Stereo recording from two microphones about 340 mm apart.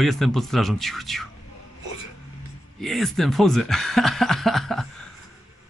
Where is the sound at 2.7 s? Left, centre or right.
Centre.